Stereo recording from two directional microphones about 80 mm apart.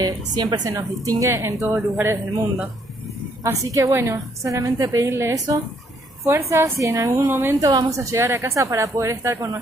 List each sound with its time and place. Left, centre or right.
0.0 s a woman's voice: right
3.4 s a woman's voice: right
5.0 s a woman's voice: right
7.6 s a woman's voice: right